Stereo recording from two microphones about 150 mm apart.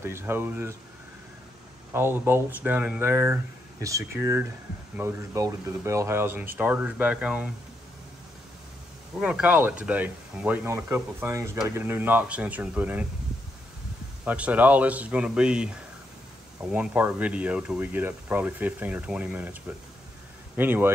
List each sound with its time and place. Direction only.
0.0 s speech: 15° right (ahead or behind)
2.0 s speech: 15° right (ahead or behind)
9.2 s speech: 10° right (ahead or behind)
14.2 s speech: 10° right (ahead or behind)
20.5 s speech: 15° right (ahead or behind)